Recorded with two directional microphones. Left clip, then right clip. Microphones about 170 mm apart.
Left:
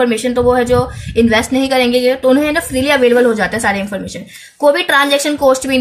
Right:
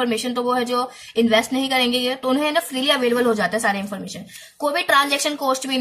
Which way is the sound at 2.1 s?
25° right (ahead or behind).